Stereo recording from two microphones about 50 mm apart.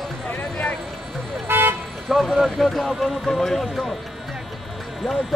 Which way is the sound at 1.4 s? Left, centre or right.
Right.